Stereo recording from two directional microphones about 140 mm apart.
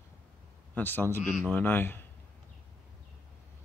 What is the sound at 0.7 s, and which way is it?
Speech, 15° left (ahead or behind).